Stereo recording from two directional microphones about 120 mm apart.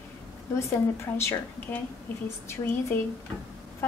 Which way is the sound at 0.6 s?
20° left (ahead or behind).